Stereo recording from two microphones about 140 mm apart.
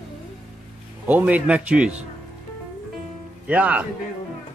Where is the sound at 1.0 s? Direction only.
10° right (ahead or behind).